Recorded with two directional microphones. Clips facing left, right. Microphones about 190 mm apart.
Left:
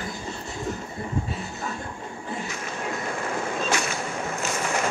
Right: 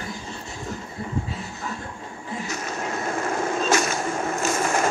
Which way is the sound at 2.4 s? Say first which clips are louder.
Right 2 dB; 40° right (ahead or behind).